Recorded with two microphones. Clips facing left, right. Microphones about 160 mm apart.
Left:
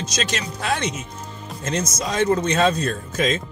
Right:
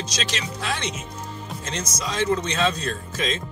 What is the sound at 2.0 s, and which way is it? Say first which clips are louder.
Speech: left 3 dB; 50° left (ahead or behind).